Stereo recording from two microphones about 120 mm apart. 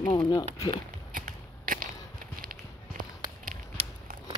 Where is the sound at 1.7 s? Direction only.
90° right.